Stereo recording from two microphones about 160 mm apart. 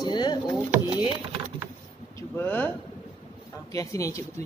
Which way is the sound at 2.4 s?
10° left (ahead or behind).